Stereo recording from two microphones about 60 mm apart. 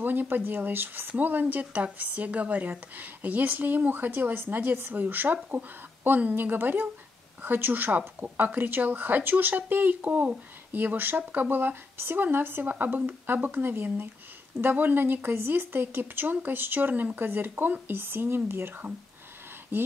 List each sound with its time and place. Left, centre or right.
0.0 s speech: right